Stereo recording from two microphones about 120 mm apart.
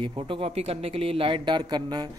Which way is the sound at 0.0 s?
40° right (ahead or behind).